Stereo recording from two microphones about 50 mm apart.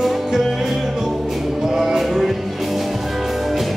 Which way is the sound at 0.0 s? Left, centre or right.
Centre.